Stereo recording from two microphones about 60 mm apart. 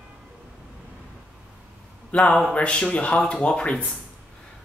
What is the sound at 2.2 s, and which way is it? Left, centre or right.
Speech, centre.